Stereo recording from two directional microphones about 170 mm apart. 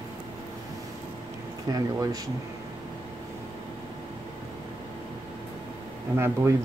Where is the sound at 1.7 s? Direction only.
20° right (ahead or behind).